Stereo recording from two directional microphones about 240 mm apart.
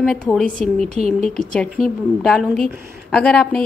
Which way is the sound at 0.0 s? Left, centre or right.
Centre.